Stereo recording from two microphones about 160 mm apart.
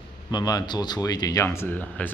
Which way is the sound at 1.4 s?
15° left (ahead or behind).